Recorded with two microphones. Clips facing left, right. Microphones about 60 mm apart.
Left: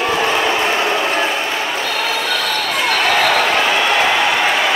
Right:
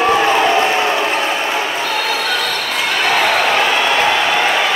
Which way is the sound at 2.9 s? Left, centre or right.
Centre.